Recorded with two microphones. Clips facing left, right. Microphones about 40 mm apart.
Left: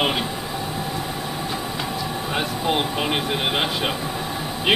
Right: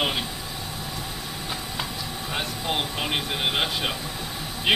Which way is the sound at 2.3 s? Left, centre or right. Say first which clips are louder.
Left 5 dB; centre.